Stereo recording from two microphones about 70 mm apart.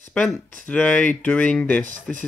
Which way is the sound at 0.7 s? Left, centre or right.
Centre.